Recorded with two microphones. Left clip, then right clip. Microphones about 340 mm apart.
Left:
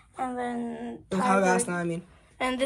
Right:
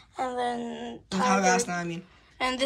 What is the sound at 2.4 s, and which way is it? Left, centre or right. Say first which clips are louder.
Speech: even; centre.